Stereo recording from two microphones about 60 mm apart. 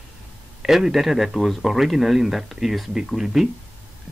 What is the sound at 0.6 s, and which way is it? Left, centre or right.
Speech, centre.